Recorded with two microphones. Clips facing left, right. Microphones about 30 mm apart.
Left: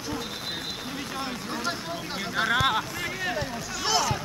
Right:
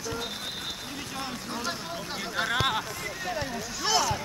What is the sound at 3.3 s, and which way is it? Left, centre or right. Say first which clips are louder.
Speech: left 2 dB; centre.